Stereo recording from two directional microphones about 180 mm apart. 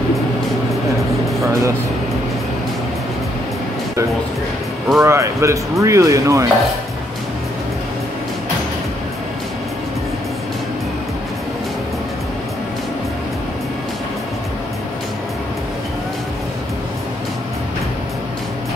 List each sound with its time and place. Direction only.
1.4 s music: 15° right (ahead or behind)
5.0 s speech: 15° right (ahead or behind)